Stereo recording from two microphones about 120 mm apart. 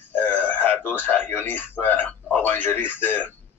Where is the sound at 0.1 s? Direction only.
15° left (ahead or behind).